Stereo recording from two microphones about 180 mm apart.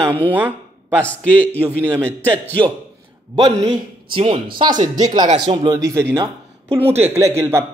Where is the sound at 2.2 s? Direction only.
10° left (ahead or behind).